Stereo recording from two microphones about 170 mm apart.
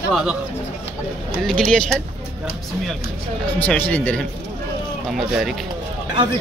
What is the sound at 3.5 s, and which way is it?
Speech, 10° left (ahead or behind).